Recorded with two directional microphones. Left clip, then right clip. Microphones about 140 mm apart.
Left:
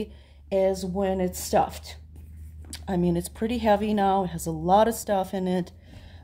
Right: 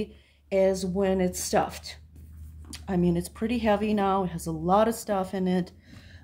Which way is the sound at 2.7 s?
35° left (ahead or behind).